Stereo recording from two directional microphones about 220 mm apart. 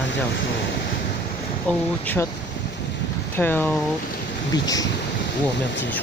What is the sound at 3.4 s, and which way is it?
Speech, 10° left (ahead or behind).